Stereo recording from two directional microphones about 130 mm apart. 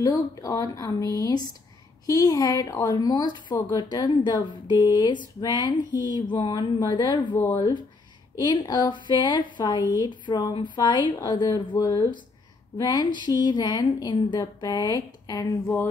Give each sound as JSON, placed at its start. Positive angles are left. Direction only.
{"t": 0.0, "sound": "speech", "side_deg": 25}
{"t": 7.3, "sound": "speech", "side_deg": 20}
{"t": 8.4, "sound": "speech", "side_deg": 30}
{"t": 15.6, "sound": "speech", "side_deg": 15}